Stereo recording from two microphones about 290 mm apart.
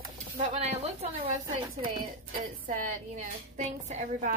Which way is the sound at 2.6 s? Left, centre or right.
Right.